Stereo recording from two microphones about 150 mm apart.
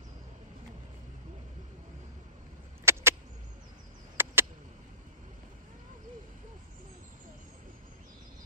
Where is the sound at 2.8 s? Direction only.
15° right (ahead or behind).